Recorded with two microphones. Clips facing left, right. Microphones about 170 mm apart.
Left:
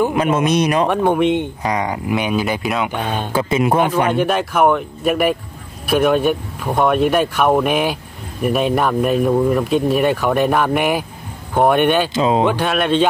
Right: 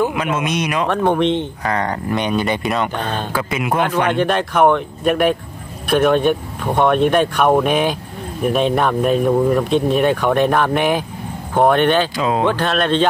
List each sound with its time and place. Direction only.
0.1 s speech: 35° left (ahead or behind)
0.8 s speech: 10° left (ahead or behind)
3.3 s a man's voice: 30° left (ahead or behind)
4.1 s speech: 5° left (ahead or behind)
12.2 s a man's voice: 20° left (ahead or behind)
12.4 s speech: 10° left (ahead or behind)